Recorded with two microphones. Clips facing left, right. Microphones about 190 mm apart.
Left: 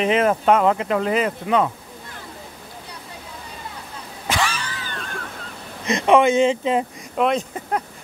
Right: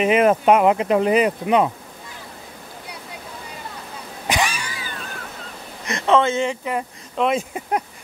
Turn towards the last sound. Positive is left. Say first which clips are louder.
# right 1 dB
turn(degrees=-10)  # may be behind; listen again after turning